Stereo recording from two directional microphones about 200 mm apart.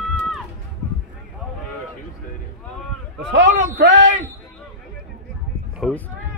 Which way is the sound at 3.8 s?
65° right (ahead or behind).